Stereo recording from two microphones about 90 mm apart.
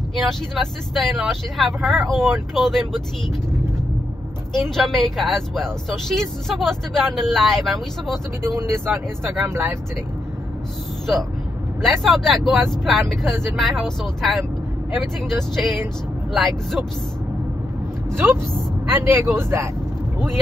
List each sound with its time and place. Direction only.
0.1 s speech: 5° left (ahead or behind)
4.6 s speech: 5° left (ahead or behind)
8.5 s speech: 30° right (ahead or behind)
11.8 s speech: centre (ahead or behind)
18.1 s speech: 25° right (ahead or behind)